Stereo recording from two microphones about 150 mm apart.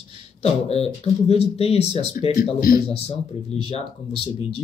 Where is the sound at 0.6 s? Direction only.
40° left (ahead or behind).